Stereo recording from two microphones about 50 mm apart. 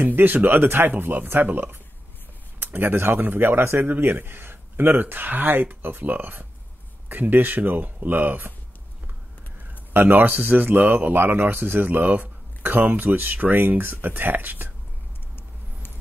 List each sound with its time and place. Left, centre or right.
0.0 s speech: right
9.9 s speech: right